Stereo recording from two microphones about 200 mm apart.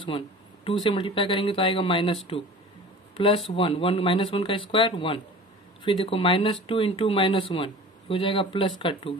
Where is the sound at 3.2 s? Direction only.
25° left (ahead or behind).